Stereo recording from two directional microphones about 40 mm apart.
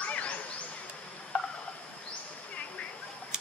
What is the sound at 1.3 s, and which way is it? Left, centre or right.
Cricket, left.